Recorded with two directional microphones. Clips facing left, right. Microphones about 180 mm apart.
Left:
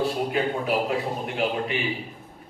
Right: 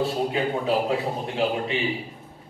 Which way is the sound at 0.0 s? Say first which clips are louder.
Even; 25° right (ahead or behind).